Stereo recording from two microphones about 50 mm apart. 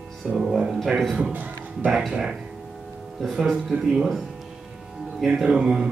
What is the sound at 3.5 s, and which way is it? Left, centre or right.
Speech, centre.